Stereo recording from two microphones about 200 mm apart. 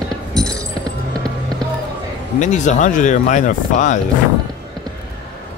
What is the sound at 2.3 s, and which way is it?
Speech, 35° left (ahead or behind).